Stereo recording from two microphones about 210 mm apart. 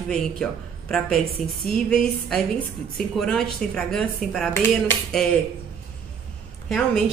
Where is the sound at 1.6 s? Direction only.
5° left (ahead or behind).